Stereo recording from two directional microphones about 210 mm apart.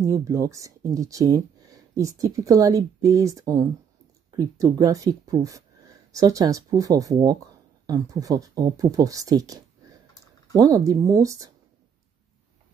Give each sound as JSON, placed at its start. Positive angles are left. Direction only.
{"t": 0.0, "sound": "speech", "side_deg": -15}